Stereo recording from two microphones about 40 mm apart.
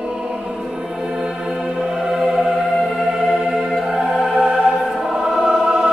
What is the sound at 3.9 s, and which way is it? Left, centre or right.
Music, centre.